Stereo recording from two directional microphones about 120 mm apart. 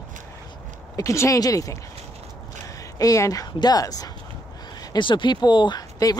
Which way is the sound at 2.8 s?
30° left (ahead or behind).